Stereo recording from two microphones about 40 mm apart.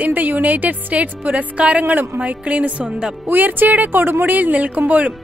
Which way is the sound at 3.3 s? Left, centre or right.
Right.